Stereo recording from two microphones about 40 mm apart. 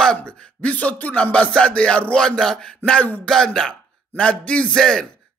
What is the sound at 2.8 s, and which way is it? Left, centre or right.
Speech, left.